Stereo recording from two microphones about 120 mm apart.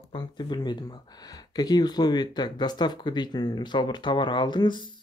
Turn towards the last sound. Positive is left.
turn(degrees=40)  # may be behind; listen again after turning